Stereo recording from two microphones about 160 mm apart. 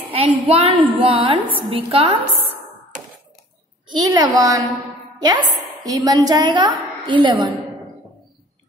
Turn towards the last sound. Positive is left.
turn(degrees=-30)  # may be behind; listen again after turning